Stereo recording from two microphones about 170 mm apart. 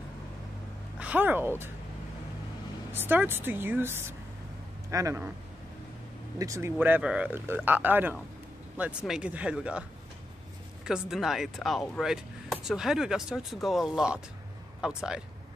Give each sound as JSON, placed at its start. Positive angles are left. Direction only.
{"t": 0.9, "sound": "speech", "side_deg": -10}
{"t": 2.9, "sound": "speech", "side_deg": -10}
{"t": 6.3, "sound": "speech", "side_deg": -20}
{"t": 10.9, "sound": "speech", "side_deg": 0}